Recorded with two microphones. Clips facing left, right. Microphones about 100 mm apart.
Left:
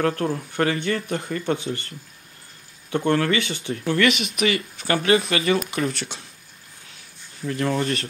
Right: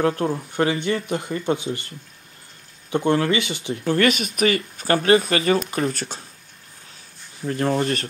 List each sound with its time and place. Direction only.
0.0 s speech: 20° right (ahead or behind)
3.1 s speech: 15° right (ahead or behind)
3.8 s speech: 35° right (ahead or behind)
7.4 s speech: 35° right (ahead or behind)